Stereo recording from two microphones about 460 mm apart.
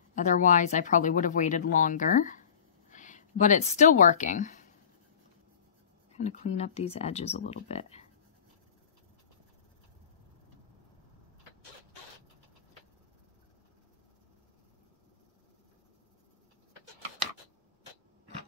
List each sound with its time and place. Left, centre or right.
0.1 s a woman's voice: centre
6.1 s speech: centre